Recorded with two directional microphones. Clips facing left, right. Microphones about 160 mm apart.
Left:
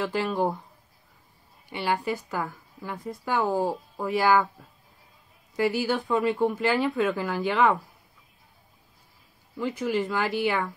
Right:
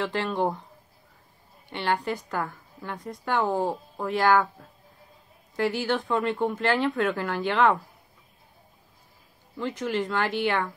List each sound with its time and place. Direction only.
0.0 s speech: centre (ahead or behind)
1.7 s speech: 5° left (ahead or behind)
9.6 s speech: 5° left (ahead or behind)